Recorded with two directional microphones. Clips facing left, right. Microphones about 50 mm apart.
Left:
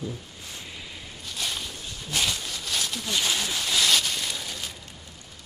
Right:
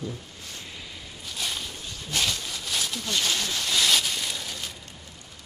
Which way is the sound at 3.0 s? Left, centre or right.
Centre.